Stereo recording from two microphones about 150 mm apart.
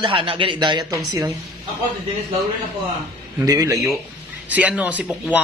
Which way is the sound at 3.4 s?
25° right (ahead or behind).